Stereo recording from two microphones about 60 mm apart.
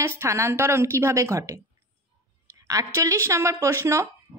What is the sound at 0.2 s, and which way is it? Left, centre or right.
A woman's voice, right.